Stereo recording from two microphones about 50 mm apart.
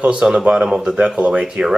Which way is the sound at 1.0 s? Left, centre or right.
Right.